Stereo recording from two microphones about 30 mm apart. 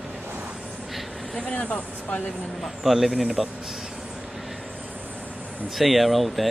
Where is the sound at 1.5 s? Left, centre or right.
Left.